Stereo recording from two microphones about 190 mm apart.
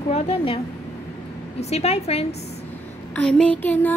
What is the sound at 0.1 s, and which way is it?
Speech, 30° left (ahead or behind).